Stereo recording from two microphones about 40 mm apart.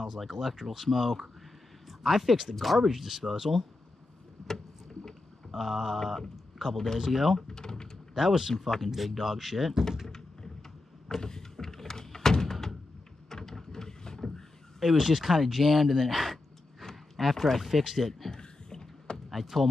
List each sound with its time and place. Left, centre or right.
0.0 s speech: centre
5.5 s a sound: centre
5.9 s speech: centre
7.3 s speech: centre
8.1 s speech: centre
10.0 s a sound: centre
11.1 s door: centre
13.3 s a sound: centre
14.8 s speech: centre
16.9 s a sound: centre
17.6 s speech: centre
18.3 s rowboat: centre
19.3 s speech: centre